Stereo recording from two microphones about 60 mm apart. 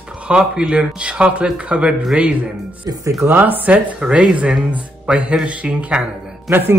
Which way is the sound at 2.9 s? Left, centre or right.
Right.